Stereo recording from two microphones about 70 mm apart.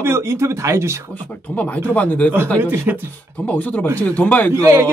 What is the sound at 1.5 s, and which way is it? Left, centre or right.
Speech, left.